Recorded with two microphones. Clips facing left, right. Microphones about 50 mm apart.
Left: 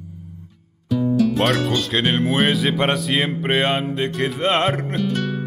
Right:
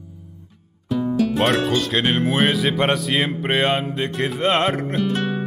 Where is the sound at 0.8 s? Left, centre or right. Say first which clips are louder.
Left 2 dB; right.